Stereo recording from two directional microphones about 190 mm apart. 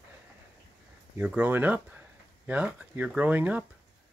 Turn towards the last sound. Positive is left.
turn(degrees=-10)  # may be behind; listen again after turning